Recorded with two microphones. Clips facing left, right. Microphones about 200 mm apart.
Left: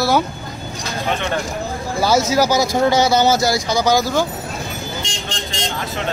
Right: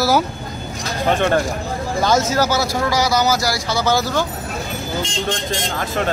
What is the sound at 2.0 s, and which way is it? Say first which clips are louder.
Speech: left 2 dB; 10° left (ahead or behind).